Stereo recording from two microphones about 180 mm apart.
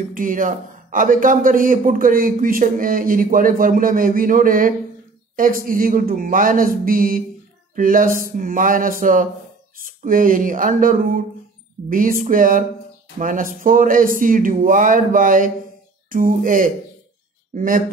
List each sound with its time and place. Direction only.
0.1 s a man's voice: 50° right (ahead or behind)